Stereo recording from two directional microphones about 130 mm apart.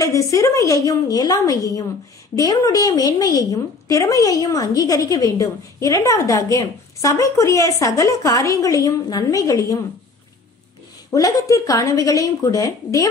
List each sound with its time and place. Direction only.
0.0 s a woman's voice: 25° left (ahead or behind)
11.1 s a woman's voice: 25° left (ahead or behind)